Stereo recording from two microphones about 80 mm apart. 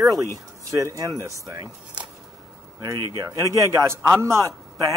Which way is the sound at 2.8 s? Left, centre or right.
Right.